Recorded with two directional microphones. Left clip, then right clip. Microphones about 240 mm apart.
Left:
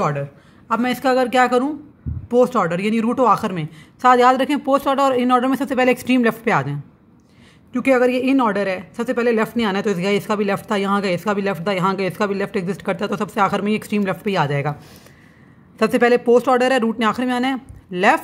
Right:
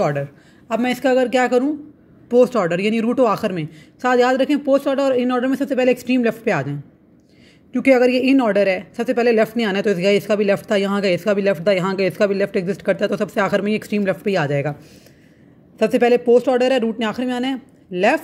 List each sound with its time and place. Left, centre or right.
0.0 s a man's voice: centre
15.8 s a woman's voice: centre